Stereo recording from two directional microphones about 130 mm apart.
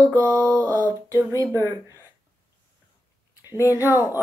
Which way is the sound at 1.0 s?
25° right (ahead or behind).